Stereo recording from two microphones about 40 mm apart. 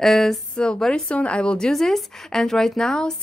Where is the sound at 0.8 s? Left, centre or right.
Left.